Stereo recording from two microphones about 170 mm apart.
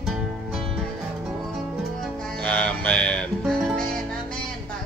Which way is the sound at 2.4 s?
5° left (ahead or behind).